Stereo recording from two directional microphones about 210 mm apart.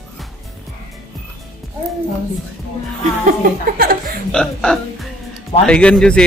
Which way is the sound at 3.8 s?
45° right (ahead or behind).